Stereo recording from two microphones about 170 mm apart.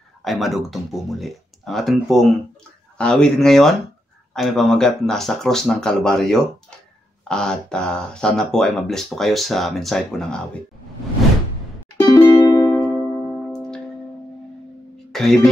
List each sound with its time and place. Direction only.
0.2 s speech: centre (ahead or behind)
12.1 s music: 20° left (ahead or behind)
12.8 s music: 10° right (ahead or behind)
13.5 s music: 5° left (ahead or behind)
15.1 s music: centre (ahead or behind)